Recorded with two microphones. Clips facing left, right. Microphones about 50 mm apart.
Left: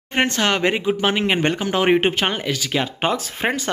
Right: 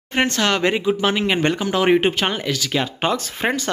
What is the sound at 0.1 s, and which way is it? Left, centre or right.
Speech, left.